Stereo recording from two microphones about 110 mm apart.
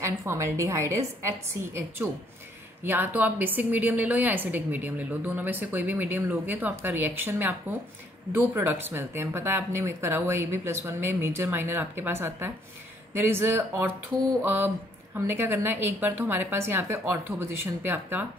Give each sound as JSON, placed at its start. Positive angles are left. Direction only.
{"t": 0.0, "sound": "a woman's voice", "side_deg": -25}